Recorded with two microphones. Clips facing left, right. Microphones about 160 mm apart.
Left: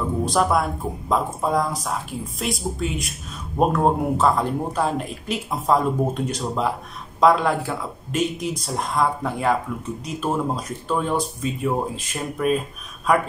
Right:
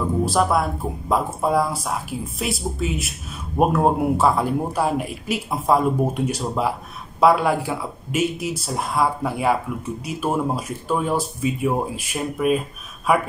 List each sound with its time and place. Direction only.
0.2 s speech: 5° right (ahead or behind)